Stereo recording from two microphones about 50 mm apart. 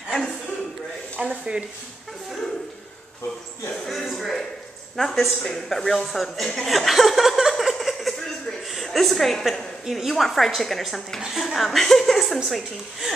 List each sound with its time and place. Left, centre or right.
1.3 s speech: centre
3.7 s speech: centre
7.7 s a sound: centre
9.8 s speech: centre
11.1 s speech: centre